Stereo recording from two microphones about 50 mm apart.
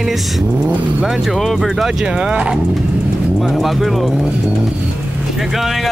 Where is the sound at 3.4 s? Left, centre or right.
Centre.